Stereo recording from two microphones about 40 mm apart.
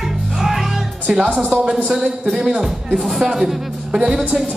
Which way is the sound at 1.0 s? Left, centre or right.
Right.